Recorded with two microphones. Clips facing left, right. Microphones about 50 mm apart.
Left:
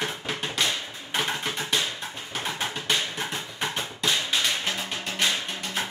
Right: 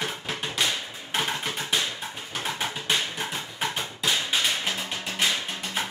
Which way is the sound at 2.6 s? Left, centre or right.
Centre.